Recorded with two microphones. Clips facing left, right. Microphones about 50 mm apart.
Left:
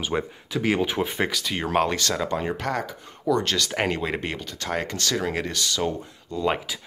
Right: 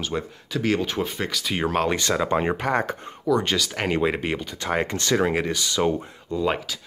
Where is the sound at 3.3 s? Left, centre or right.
Centre.